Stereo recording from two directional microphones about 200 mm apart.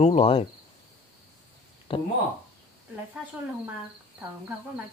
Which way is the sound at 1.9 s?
25° left (ahead or behind).